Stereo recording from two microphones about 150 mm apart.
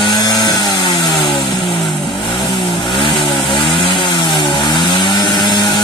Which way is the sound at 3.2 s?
Centre (ahead or behind).